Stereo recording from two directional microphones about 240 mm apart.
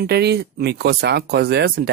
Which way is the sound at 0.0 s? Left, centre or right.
Right.